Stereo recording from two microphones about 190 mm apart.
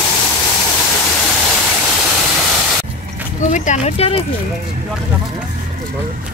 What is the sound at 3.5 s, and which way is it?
Speech, 35° left (ahead or behind).